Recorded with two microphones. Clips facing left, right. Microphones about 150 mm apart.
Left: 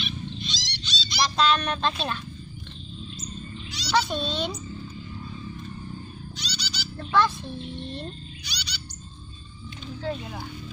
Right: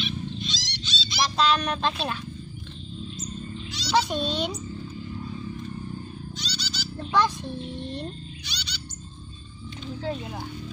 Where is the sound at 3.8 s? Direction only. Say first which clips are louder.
Right 1 dB; 15° right (ahead or behind).